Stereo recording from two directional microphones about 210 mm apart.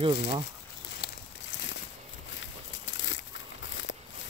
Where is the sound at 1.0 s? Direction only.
20° left (ahead or behind).